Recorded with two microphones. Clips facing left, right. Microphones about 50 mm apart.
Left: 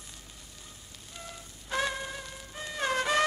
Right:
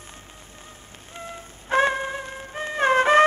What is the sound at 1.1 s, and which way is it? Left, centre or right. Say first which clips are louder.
Music: right 8 dB; right.